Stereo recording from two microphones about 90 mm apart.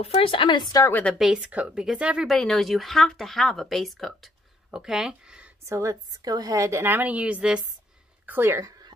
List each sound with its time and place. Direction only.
0.0 s speech: 85° left; by 0.8 s 50° left (ahead or behind)
1.1 s speech: 5° right (ahead or behind)
2.2 s speech: 5° left (ahead or behind)
5.7 s a woman's voice: 35° right (ahead or behind); by 7.6 s 10° right (ahead or behind)
8.3 s a woman's voice: 25° right (ahead or behind)